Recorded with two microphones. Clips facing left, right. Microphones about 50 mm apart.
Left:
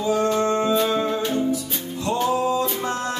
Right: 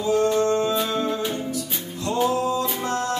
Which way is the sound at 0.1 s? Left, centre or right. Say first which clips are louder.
Right 1 dB; left.